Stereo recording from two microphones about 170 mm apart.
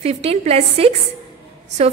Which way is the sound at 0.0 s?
40° right (ahead or behind).